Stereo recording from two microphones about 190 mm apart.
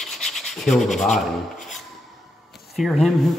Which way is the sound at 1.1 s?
40° left (ahead or behind).